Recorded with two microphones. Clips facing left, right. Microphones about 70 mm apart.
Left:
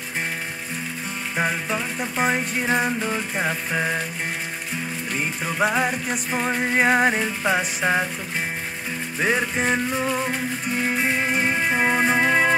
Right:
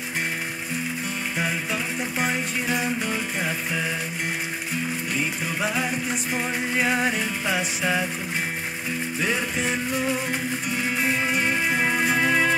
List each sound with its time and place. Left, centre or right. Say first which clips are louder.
1.3 s music: left 5 dB; left
3.0 s music: left 2 dB; left
5.6 s music: left 6 dB; left
6.3 s music: left 5 dB; left
9.2 s music: left 5 dB; left
11.3 s music: left 2 dB; left